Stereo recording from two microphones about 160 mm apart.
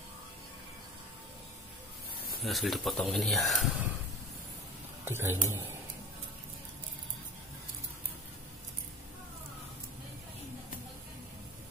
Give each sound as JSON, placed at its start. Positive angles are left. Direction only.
{"t": 2.4, "sound": "speech", "side_deg": 0}
{"t": 5.0, "sound": "speech", "side_deg": -15}